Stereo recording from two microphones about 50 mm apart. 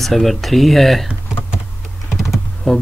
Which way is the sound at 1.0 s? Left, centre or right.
Centre.